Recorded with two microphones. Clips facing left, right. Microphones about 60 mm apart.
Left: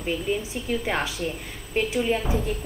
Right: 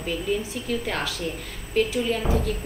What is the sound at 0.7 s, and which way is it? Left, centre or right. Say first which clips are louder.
A woman's voice: left 2 dB; centre.